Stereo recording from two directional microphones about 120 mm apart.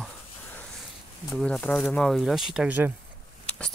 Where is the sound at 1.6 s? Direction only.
15° left (ahead or behind); by 2.9 s 15° right (ahead or behind).